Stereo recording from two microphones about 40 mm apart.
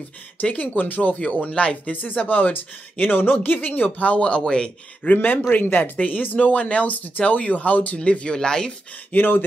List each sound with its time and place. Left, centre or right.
0.4 s speech: left
1.2 s speech: left
1.9 s speech: left
2.5 s speech: left
4.2 s speech: left
5.1 s speech: left
5.9 s speech: left
8.0 s speech: left
8.3 s speech: centre
9.1 s speech: left